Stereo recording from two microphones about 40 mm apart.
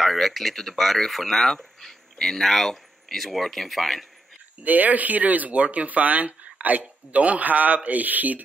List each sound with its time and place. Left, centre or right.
0.0 s speech: centre
4.6 s a man's voice: right